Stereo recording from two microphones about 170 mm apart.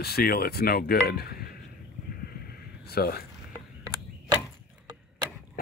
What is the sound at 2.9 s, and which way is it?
Speech, 65° left (ahead or behind).